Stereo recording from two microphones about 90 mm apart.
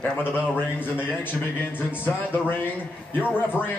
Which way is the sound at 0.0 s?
20° left (ahead or behind).